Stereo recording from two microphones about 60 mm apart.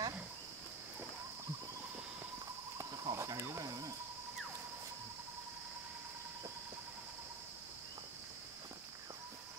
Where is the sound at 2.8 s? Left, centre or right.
Right.